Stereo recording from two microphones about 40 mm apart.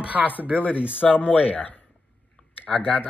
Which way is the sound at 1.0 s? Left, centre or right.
Left.